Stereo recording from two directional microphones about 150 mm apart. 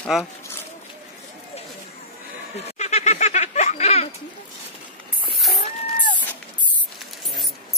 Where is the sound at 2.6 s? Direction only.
50° left (ahead or behind).